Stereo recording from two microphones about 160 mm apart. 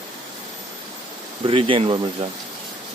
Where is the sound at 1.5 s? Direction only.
35° right (ahead or behind).